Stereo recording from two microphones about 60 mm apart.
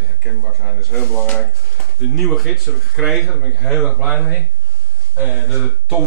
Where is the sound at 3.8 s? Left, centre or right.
Centre.